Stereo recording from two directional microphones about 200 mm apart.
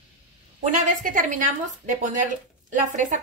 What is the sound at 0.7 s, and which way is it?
Speech, 40° right (ahead or behind).